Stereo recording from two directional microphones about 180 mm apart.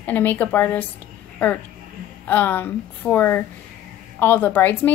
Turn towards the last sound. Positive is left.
turn(degrees=10)  # may be behind; listen again after turning